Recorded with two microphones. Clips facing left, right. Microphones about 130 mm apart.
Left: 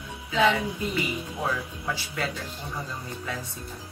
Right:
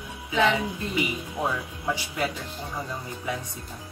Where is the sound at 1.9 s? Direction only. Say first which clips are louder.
Right 3 dB; 15° right (ahead or behind).